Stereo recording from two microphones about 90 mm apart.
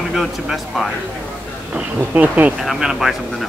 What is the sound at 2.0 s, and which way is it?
Speech, 15° right (ahead or behind).